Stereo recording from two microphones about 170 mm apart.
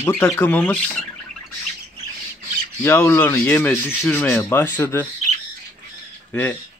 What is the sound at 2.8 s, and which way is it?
Speech, 15° left (ahead or behind).